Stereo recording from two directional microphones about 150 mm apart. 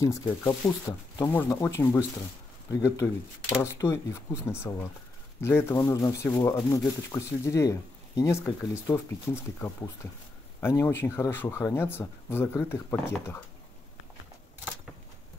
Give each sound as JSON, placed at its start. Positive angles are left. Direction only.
{"t": 0.0, "sound": "speech", "side_deg": 20}